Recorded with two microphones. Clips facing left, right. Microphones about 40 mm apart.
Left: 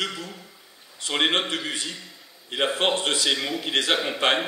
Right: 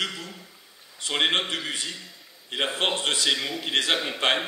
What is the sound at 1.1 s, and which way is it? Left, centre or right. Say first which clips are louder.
A man's voice: left 1 dB; centre.